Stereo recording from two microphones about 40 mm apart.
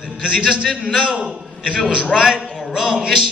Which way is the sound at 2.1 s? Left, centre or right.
Right.